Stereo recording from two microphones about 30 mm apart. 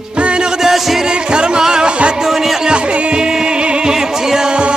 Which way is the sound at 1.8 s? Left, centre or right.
Right.